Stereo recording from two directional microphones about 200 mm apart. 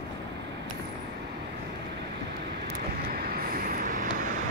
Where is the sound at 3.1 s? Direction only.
50° right (ahead or behind).